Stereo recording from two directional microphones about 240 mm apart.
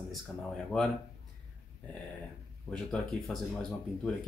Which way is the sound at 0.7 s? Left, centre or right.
Centre.